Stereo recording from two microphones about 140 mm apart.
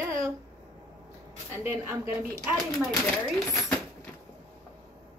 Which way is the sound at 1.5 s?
20° right (ahead or behind).